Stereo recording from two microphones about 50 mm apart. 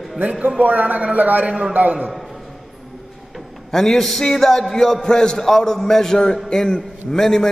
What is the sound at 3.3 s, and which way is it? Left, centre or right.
A man's voice, centre.